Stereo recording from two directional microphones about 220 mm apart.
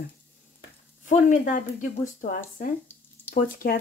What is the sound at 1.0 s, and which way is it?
Speech, 35° left (ahead or behind).